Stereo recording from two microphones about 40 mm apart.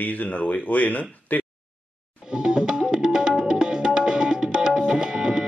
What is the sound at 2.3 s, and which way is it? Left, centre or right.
Music, centre.